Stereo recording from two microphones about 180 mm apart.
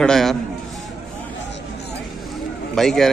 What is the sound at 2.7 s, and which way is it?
Speech, centre (ahead or behind).